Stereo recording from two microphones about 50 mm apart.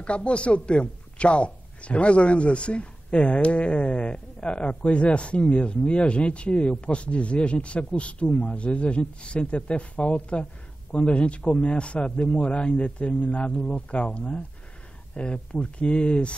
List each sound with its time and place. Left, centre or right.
0.0 s a woman's voice: left